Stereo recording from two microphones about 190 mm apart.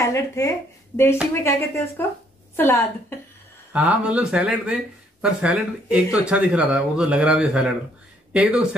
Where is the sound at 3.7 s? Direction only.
5° right (ahead or behind).